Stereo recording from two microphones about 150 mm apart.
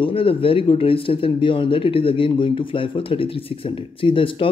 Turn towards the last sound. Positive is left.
turn(degrees=35)  # may be behind; listen again after turning